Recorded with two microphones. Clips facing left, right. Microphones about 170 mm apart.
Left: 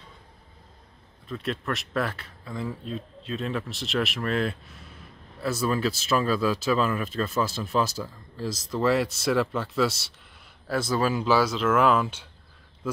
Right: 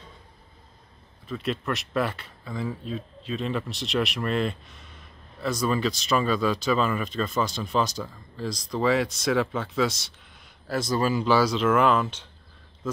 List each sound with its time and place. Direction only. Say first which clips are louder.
1.2 s speech: right 2 dB; centre (ahead or behind)